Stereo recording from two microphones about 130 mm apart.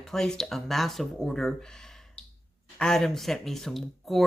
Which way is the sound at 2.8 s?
5° left (ahead or behind).